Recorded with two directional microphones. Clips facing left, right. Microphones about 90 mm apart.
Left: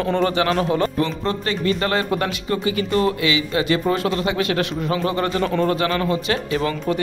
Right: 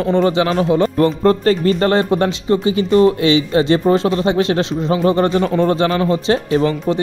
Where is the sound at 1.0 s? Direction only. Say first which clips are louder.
Right 9 dB; 45° right (ahead or behind).